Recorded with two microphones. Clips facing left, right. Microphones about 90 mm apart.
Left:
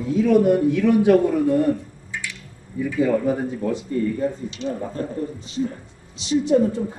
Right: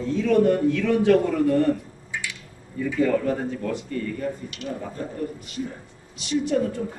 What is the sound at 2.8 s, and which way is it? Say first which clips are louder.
A woman's voice: left 2 dB; 10° left (ahead or behind).